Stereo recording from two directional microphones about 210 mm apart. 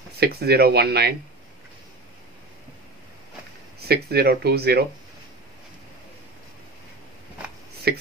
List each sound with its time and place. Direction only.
0.2 s speech: 50° right (ahead or behind)
3.8 s speech: 50° right (ahead or behind)
7.9 s speech: 50° right (ahead or behind)